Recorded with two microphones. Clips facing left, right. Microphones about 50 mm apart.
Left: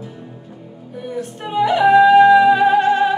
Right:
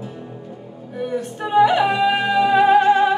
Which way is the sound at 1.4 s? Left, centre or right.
Right.